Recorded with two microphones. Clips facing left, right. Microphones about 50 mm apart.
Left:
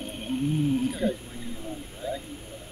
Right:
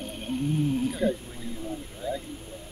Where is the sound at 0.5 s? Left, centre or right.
Centre.